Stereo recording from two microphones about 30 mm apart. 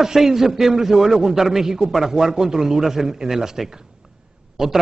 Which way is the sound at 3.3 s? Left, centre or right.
Centre.